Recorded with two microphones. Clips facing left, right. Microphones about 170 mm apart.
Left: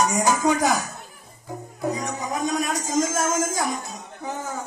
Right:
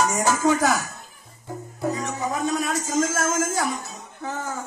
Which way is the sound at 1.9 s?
15° left (ahead or behind).